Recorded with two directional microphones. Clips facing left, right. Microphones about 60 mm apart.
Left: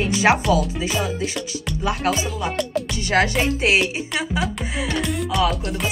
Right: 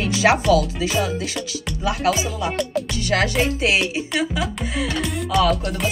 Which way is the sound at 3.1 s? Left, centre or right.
Centre.